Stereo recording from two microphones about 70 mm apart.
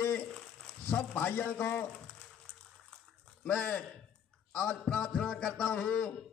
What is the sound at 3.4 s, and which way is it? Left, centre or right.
A man's voice, centre.